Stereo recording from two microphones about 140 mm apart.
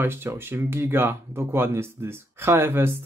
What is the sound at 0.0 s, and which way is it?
Speech, 15° right (ahead or behind).